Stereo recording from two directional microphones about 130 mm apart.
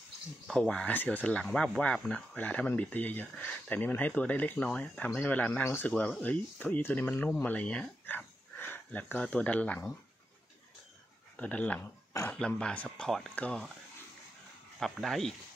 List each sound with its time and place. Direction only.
0.5 s speech: 5° left (ahead or behind)
11.3 s speech: 10° left (ahead or behind)
12.1 s a man's voice: 20° left (ahead or behind)
12.4 s speech: 5° left (ahead or behind)
14.8 s speech: centre (ahead or behind)